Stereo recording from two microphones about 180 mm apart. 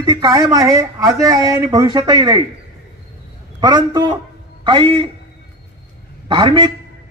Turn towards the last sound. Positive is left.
turn(degrees=-25)  # may be behind; listen again after turning